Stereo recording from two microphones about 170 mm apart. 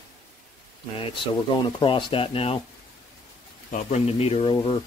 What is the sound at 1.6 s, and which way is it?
Speech, 30° left (ahead or behind).